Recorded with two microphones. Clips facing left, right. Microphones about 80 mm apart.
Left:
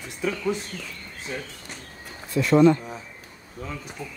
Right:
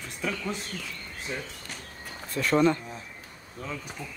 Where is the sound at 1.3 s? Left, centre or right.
Centre.